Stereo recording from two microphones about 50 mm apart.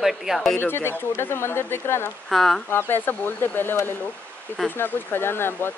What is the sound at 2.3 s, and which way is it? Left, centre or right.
Speech, centre.